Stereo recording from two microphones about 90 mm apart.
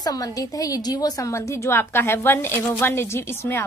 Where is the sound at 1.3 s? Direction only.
30° left (ahead or behind).